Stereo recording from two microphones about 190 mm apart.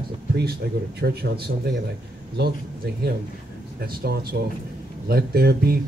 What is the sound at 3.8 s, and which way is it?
Speech, 55° right (ahead or behind).